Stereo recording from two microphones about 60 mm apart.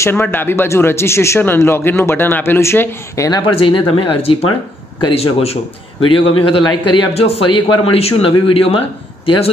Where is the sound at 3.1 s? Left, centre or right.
Left.